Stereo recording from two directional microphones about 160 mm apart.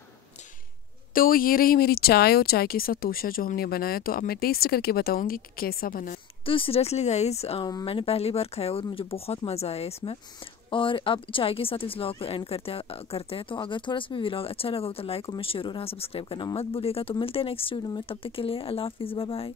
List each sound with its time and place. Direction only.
1.1 s speech: 60° left (ahead or behind)
6.4 s speech: 35° left (ahead or behind)